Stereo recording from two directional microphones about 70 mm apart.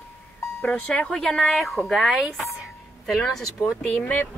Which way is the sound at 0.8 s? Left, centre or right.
Centre.